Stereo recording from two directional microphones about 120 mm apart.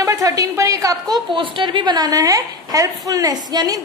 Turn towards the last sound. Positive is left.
turn(degrees=-35)  # may be behind; listen again after turning